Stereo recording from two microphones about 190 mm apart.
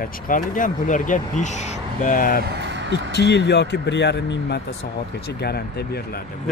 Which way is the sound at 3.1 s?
65° left (ahead or behind).